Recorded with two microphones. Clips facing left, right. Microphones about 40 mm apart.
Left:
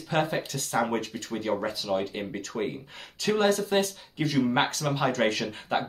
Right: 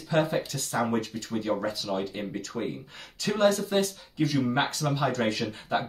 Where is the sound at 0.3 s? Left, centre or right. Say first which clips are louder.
Even; left.